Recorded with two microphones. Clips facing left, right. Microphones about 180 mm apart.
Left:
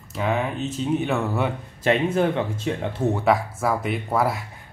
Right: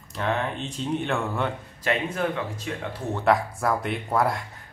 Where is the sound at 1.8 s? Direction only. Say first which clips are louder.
Left 6 dB; 25° left (ahead or behind).